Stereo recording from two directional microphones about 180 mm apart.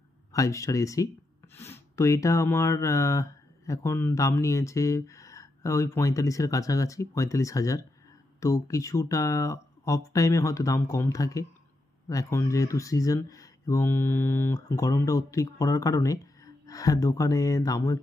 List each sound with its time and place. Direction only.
0.3 s speech: 15° left (ahead or behind)